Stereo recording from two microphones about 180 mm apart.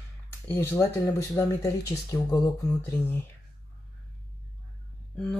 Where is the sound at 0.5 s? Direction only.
15° left (ahead or behind).